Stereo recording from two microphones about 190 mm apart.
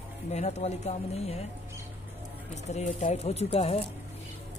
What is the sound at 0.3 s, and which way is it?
Speech, 35° left (ahead or behind).